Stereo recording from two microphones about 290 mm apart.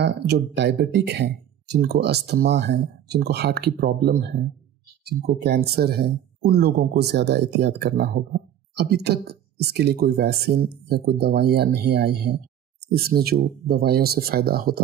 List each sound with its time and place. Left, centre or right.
0.0 s speech: right
5.4 s speech: right